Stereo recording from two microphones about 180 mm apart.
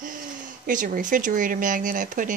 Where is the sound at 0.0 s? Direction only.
50° right (ahead or behind).